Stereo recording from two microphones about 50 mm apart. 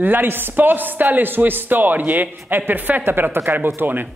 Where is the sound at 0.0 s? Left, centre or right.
Right.